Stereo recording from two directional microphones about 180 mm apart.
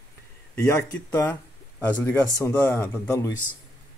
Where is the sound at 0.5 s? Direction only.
10° left (ahead or behind).